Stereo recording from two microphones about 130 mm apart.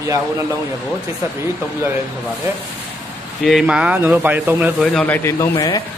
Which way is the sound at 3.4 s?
Centre (ahead or behind).